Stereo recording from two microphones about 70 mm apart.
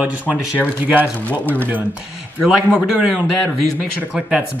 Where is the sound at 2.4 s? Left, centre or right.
Centre.